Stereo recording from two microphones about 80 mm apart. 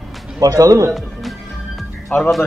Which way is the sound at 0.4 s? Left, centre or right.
Right.